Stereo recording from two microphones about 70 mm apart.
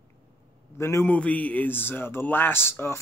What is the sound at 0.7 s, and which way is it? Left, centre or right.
Speech, left.